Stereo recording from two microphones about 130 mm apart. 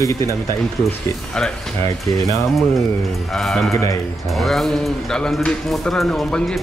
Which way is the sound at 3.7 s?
25° left (ahead or behind).